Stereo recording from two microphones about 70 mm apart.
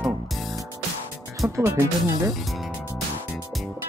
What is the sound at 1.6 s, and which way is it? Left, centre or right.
Speech, right.